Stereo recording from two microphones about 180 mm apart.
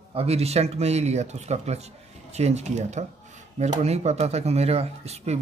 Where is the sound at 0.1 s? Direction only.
35° right (ahead or behind).